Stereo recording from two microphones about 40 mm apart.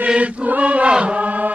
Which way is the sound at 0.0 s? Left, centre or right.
Right.